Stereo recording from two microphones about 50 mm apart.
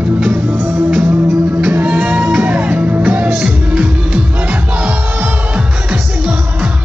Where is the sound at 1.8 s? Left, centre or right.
Right.